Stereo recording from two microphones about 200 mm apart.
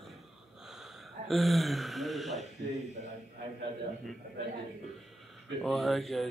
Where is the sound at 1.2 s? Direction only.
Centre (ahead or behind).